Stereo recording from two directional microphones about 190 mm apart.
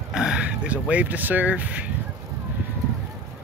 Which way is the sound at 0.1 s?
5° right (ahead or behind).